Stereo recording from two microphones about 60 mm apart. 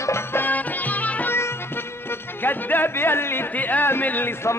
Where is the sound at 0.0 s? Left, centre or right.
Left.